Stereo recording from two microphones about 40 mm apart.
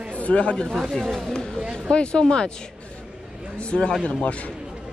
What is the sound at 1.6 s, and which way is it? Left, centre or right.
Speech, right.